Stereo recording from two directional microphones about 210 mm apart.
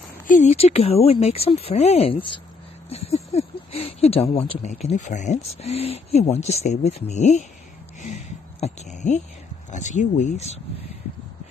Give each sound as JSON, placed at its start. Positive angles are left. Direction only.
{"t": 0.3, "sound": "speech", "side_deg": 30}
{"t": 8.1, "sound": "a sound", "side_deg": 30}
{"t": 9.7, "sound": "speech", "side_deg": 35}